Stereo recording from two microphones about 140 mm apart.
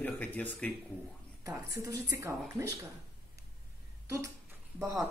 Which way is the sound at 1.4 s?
20° right (ahead or behind).